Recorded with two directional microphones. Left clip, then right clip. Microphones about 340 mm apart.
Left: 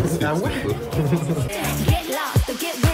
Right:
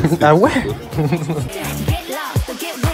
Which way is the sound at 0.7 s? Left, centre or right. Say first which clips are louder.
Right 2 dB; centre.